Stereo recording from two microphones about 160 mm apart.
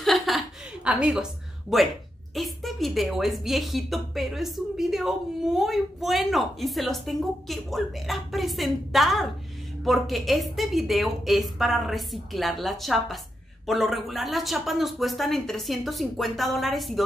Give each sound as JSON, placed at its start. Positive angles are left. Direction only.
{"t": 0.0, "sound": "chuckle", "side_deg": 0}
{"t": 0.8, "sound": "a woman's voice", "side_deg": -5}